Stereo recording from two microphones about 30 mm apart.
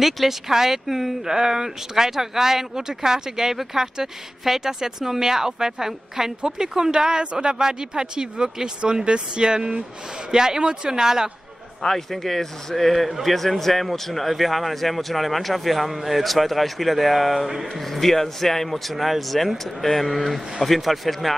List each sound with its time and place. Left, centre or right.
0.0 s speech: centre
1.3 s speech: right
11.8 s a man's voice: centre